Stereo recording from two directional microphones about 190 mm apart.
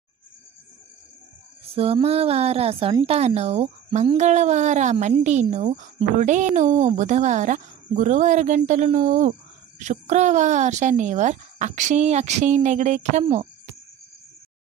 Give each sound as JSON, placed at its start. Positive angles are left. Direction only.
{"t": 1.8, "sound": "speech", "side_deg": -30}